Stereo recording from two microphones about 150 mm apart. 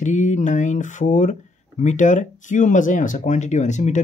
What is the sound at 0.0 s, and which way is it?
Speech, 55° left (ahead or behind).